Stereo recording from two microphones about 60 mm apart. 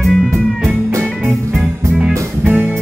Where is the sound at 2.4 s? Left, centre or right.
Right.